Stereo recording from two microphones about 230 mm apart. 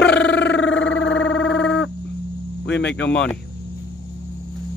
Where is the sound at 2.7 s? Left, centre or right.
Left.